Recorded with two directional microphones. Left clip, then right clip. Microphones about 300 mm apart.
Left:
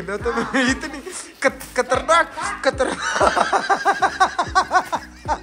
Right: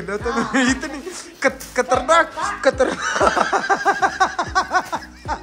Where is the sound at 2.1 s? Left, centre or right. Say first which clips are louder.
Right 1 dB; centre.